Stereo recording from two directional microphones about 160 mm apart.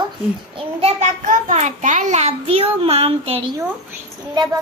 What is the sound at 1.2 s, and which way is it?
A child's voice, 50° right (ahead or behind).